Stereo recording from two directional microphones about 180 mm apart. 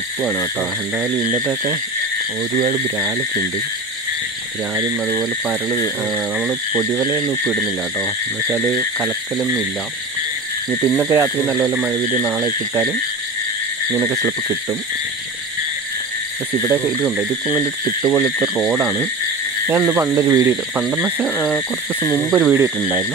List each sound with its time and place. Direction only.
0.2 s speech: 10° right (ahead or behind)
2.6 s a sound: 20° right (ahead or behind)
5.1 s speech: centre (ahead or behind)
10.7 s speech: 5° right (ahead or behind)
13.9 s a sound: 20° right (ahead or behind)
16.6 s speech: 5° right (ahead or behind)
19.7 s speech: 15° right (ahead or behind)
20.7 s speech: centre (ahead or behind)
21.5 s speech: 10° left (ahead or behind)
22.2 s speech: 5° right (ahead or behind)